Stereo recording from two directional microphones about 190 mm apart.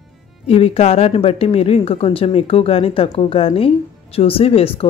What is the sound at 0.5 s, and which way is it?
A woman's voice, 30° left (ahead or behind).